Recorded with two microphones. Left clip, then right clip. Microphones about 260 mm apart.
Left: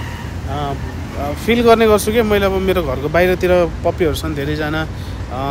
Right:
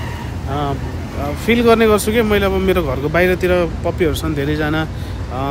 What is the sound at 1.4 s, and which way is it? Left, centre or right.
Speech, centre.